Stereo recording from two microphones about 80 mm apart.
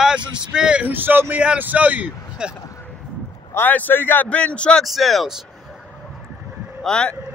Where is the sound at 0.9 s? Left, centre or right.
Right.